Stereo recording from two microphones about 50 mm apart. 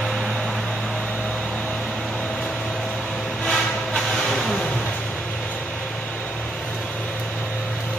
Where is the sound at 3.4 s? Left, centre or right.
Centre.